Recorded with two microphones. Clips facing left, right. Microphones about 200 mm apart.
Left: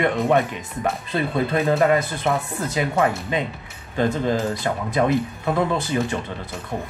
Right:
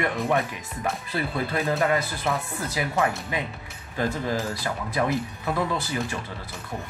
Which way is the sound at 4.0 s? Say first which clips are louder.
Left 6 dB; 20° left (ahead or behind).